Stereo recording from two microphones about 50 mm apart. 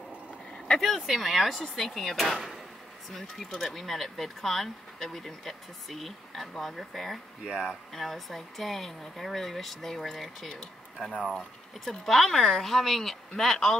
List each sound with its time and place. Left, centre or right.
0.7 s speech: centre
7.4 s speech: centre
7.9 s speech: centre
10.5 s speech: centre
11.3 s speech: centre